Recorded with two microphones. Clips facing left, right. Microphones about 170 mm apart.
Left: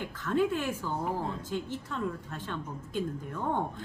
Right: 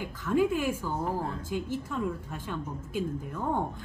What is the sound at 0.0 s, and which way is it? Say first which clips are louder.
Speech: right 2 dB; 10° right (ahead or behind).